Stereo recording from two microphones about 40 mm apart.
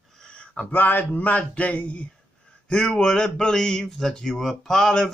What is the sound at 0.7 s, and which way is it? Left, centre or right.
Speech, left.